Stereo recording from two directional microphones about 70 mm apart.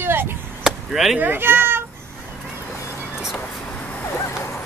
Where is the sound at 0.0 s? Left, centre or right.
Right.